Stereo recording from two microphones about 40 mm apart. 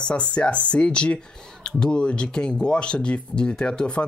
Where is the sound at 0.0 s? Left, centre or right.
Left.